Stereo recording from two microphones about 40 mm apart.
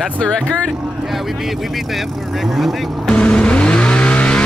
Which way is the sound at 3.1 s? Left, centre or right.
Left.